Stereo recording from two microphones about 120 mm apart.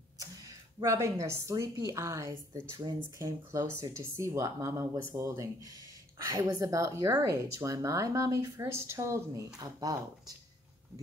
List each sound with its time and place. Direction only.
0.2 s speech: 30° right (ahead or behind)